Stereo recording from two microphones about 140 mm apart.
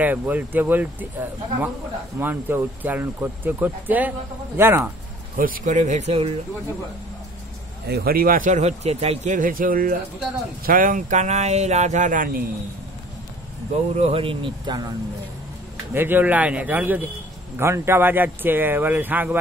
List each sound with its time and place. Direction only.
0.0 s speech: 10° right (ahead or behind)
5.4 s speech: 75° right (ahead or behind); by 6.3 s 45° right (ahead or behind)
8.0 s a man's voice: 90° right
10.6 s speech: 75° right (ahead or behind)
13.9 s speech: 45° right (ahead or behind)
15.9 s speech: 15° right (ahead or behind)